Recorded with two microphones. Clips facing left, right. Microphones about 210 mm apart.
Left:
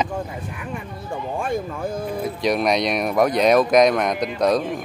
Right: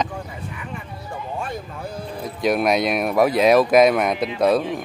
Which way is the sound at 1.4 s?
50° left (ahead or behind).